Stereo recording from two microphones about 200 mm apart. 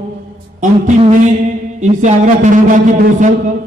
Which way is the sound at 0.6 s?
35° right (ahead or behind).